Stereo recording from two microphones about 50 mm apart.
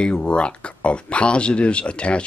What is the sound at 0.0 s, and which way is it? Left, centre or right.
Speech, left.